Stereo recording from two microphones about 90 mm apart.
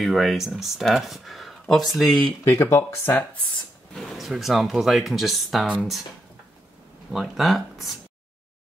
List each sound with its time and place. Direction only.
0.0 s speech: centre (ahead or behind)
2.4 s speech: 30° left (ahead or behind)
3.9 s speech: 5° left (ahead or behind)
7.1 s speech: centre (ahead or behind)